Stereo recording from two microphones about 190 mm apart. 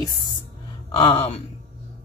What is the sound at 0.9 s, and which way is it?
Speech, 30° left (ahead or behind).